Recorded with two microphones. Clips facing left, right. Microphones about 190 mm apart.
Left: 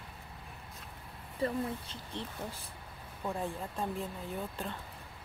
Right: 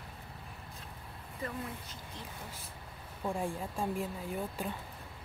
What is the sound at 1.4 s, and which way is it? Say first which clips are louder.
Speech: left 7 dB; 30° left (ahead or behind).